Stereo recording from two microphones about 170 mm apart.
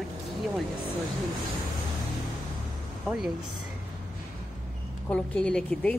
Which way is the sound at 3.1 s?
5° right (ahead or behind).